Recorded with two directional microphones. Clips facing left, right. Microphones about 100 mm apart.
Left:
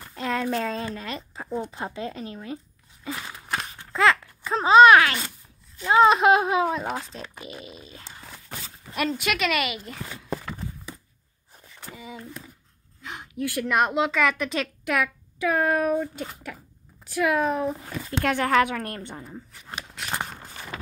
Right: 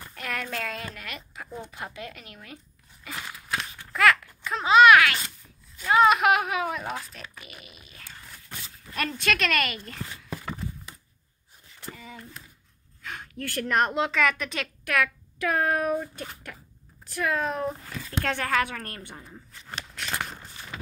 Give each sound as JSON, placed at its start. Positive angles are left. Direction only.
{"t": 0.1, "sound": "speech", "side_deg": 25}
{"t": 3.7, "sound": "a sound", "side_deg": 25}
{"t": 5.9, "sound": "speech", "side_deg": 25}
{"t": 8.9, "sound": "speech", "side_deg": 15}
{"t": 11.9, "sound": "speech", "side_deg": 20}
{"t": 17.1, "sound": "speech", "side_deg": 15}
{"t": 17.5, "sound": "speech", "side_deg": 0}
{"t": 18.2, "sound": "speech", "side_deg": 15}